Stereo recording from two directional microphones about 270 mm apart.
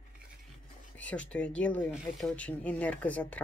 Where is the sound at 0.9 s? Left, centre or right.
Centre.